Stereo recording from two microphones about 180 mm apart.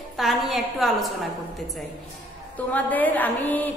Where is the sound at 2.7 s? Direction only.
10° left (ahead or behind).